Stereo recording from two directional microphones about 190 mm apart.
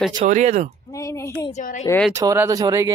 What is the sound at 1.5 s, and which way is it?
Speech, 40° left (ahead or behind).